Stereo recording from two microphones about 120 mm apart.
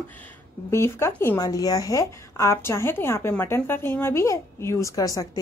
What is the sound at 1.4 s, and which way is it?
A woman's voice, 30° left (ahead or behind).